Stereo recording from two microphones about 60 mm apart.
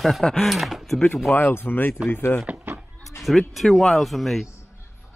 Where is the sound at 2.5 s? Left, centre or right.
Right.